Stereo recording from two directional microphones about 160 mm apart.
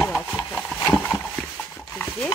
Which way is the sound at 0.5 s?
10° left (ahead or behind).